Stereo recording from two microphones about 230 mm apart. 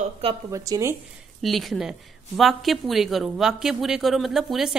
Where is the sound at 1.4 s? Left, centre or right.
Centre.